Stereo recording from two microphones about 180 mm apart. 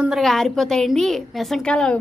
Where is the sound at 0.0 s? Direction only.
Centre (ahead or behind).